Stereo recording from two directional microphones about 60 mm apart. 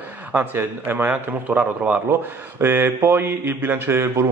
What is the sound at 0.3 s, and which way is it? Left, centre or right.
A man's voice, right.